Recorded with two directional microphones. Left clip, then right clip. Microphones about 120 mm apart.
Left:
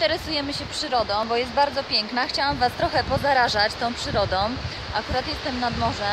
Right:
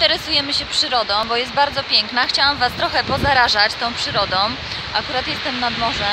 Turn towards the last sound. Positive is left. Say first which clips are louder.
# right 5 dB
turn(degrees=40)  # may be behind; listen again after turning